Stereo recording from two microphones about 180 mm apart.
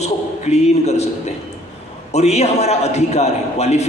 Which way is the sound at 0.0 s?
35° left (ahead or behind).